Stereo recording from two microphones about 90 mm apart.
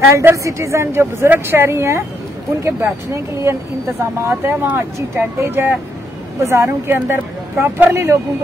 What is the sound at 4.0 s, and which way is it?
A woman's voice, 25° right (ahead or behind).